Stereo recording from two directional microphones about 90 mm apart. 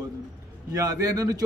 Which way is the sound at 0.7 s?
40° right (ahead or behind).